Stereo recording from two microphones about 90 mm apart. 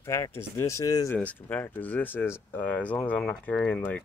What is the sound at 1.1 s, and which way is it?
Speech, 15° left (ahead or behind).